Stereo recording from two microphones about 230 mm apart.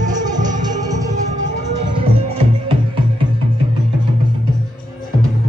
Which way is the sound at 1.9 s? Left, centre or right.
Right.